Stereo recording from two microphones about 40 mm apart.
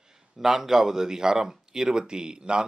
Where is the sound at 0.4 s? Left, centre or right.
Centre.